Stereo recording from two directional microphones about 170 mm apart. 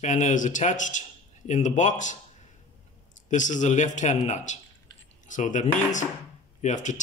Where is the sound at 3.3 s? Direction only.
45° left (ahead or behind).